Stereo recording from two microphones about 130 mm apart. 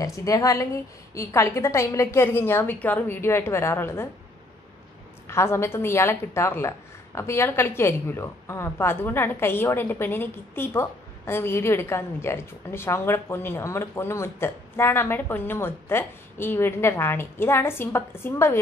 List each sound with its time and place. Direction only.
0.0 s a woman's voice: 25° left (ahead or behind)
5.3 s a woman's voice: 20° left (ahead or behind)